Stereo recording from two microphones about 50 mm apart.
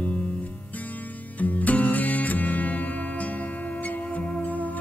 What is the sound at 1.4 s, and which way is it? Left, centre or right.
Music, left.